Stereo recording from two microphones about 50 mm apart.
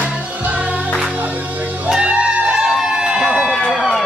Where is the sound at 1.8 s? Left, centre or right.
Right.